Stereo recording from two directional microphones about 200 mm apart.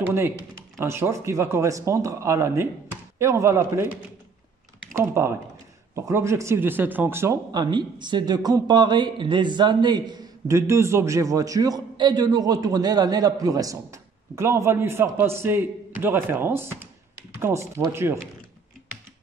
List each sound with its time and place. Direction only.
0.0 s speech: 10° right (ahead or behind)